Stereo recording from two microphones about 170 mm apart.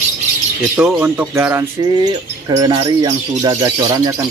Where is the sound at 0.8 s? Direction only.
10° right (ahead or behind).